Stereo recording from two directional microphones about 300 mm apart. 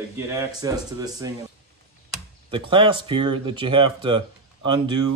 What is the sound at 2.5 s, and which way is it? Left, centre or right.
Speech, centre.